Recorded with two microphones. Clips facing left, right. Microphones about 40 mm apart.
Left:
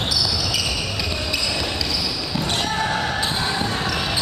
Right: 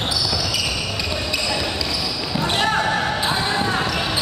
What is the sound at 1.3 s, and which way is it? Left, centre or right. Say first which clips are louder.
Basketball bounce: right 2 dB; centre.